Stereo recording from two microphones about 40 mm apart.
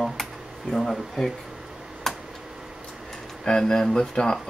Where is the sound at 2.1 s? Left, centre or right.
Centre.